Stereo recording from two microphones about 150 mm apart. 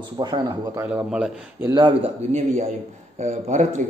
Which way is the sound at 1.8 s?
35° right (ahead or behind).